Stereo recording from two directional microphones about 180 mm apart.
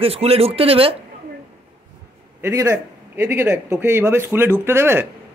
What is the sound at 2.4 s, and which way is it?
A man's voice, 15° right (ahead or behind).